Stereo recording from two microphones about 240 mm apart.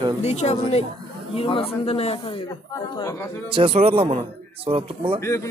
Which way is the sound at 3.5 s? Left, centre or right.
Right.